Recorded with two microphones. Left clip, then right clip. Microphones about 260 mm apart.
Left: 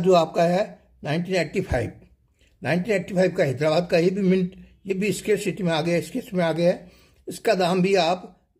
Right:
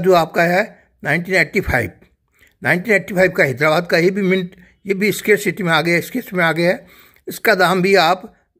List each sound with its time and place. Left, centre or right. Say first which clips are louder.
0.0 s a man's voice: right 5 dB; right